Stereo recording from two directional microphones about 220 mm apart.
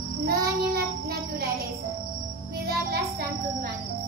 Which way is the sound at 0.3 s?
45° right (ahead or behind).